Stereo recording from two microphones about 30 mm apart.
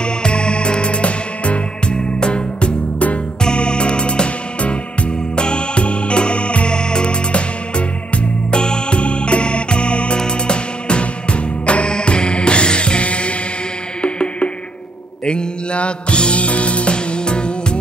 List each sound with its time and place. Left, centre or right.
0.0 s music: left
8.5 s music: left
16.9 s music: left